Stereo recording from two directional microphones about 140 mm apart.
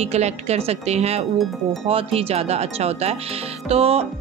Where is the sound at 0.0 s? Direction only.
50° right (ahead or behind).